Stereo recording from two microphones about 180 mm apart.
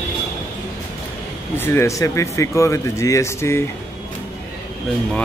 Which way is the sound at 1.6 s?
15° left (ahead or behind).